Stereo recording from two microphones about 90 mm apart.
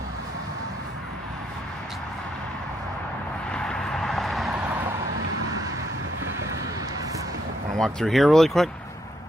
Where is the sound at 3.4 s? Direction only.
10° left (ahead or behind).